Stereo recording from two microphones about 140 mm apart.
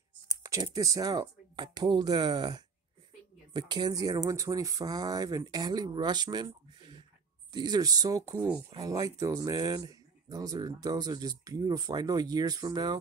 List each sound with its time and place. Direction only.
0.4 s speech: 25° right (ahead or behind)